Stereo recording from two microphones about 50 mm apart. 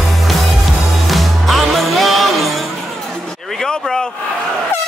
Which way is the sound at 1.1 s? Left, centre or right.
Centre.